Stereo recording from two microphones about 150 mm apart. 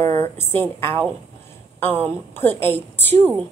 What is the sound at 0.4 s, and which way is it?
Speech, 15° left (ahead or behind).